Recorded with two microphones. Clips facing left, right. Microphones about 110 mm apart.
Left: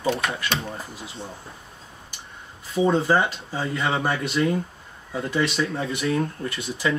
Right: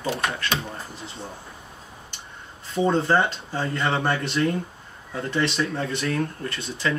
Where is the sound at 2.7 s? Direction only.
5° left (ahead or behind).